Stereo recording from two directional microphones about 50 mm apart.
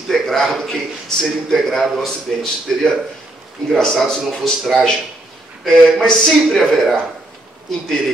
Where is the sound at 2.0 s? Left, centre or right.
Centre.